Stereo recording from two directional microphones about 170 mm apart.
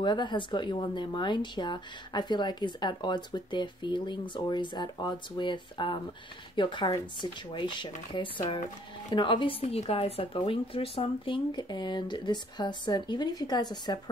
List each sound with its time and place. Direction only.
0.0 s speech: 25° left (ahead or behind)